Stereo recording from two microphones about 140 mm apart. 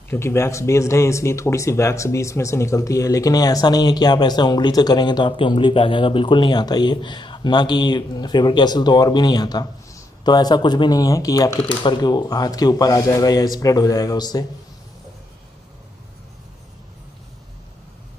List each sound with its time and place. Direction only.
0.1 s speech: 20° left (ahead or behind)